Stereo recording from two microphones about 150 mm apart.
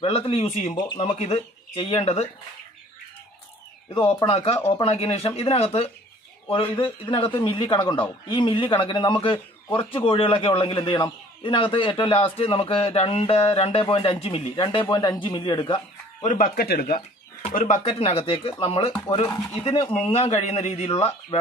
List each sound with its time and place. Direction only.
0.0 s speech: 40° left (ahead or behind)
3.9 s speech: 40° left (ahead or behind)
16.2 s speech: 65° left (ahead or behind); by 17.0 s 90° left
17.6 s speech: 55° left (ahead or behind)
18.9 s speech: 20° left (ahead or behind)
20.1 s speech: 45° left (ahead or behind)